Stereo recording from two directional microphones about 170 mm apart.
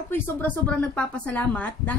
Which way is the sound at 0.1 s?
10° left (ahead or behind).